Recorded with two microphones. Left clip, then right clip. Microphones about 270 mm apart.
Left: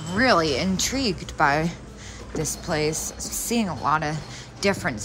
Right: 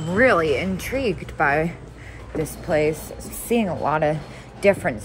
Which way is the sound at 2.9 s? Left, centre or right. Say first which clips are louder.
Right 2 dB; left.